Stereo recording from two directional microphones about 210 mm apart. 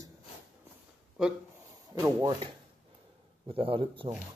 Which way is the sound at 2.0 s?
20° right (ahead or behind).